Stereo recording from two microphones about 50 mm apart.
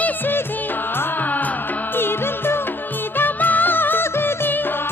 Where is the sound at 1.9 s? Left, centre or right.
Left.